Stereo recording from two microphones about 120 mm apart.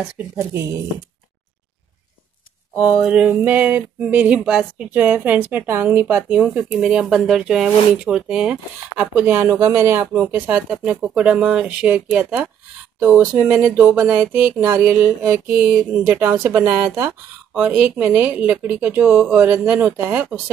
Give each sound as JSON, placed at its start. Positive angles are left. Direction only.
{"t": 2.8, "sound": "speech", "side_deg": -10}